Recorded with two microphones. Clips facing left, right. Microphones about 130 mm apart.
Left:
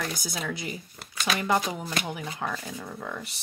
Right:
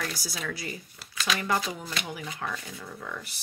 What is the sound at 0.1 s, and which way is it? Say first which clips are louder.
Speech: left 3 dB; 20° left (ahead or behind).